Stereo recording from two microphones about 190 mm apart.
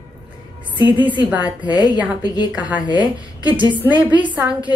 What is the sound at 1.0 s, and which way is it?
Speech, 10° right (ahead or behind).